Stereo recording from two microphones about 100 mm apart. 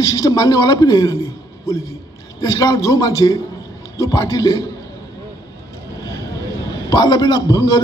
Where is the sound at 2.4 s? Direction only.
35° left (ahead or behind).